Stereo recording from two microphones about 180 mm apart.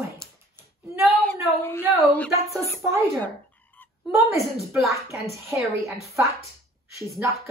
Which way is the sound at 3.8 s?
10° left (ahead or behind).